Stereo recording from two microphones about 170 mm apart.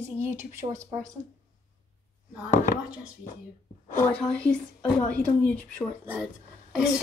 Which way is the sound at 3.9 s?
10° left (ahead or behind).